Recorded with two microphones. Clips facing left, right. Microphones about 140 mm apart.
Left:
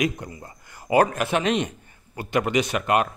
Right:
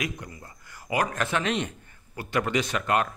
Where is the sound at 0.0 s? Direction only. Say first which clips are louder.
Left 8 dB; 25° left (ahead or behind).